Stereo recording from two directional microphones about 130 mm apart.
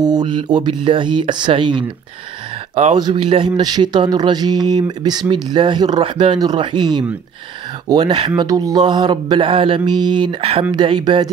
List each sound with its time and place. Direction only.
0.0 s speech: 30° right (ahead or behind)
2.7 s speech: 55° right (ahead or behind)
3.0 s speech: 35° right (ahead or behind)
8.4 s speech: 30° right (ahead or behind)